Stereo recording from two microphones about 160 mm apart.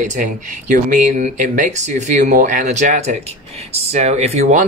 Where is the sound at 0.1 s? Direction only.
50° right (ahead or behind).